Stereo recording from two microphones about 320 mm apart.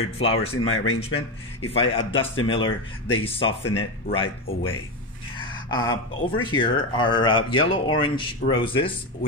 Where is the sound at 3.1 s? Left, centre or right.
Centre.